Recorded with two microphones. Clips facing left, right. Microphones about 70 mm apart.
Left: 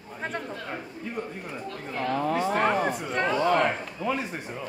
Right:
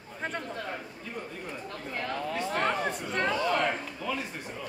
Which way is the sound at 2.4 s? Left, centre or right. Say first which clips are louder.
Left 3 dB; centre.